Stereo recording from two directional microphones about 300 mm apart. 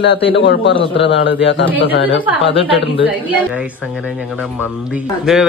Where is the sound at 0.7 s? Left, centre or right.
Centre.